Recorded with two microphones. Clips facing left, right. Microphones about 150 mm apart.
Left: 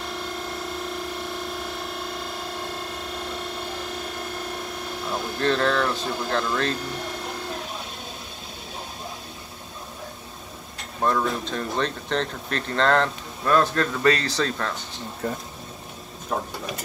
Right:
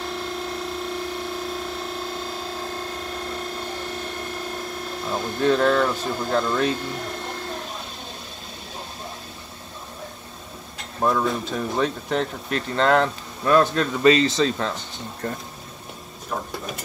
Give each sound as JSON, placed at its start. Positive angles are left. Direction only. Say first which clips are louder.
{"t": 0.0, "sound": "music", "louder": "right 3 dB", "side_deg": 0}
{"t": 4.6, "sound": "speech", "louder": "right 1 dB", "side_deg": 0}
{"t": 11.0, "sound": "speech", "louder": "right 2 dB", "side_deg": -5}
{"t": 14.0, "sound": "speech", "louder": "right 6 dB", "side_deg": -20}
{"t": 15.2, "sound": "speech", "louder": "left 1 dB", "side_deg": 5}